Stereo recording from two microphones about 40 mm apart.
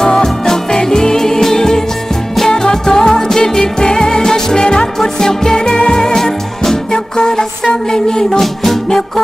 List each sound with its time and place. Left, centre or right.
0.0 s music: centre